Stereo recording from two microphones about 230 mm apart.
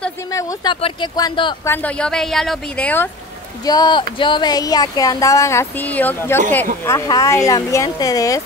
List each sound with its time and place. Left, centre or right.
0.0 s speech: centre
1.7 s a woman's voice: centre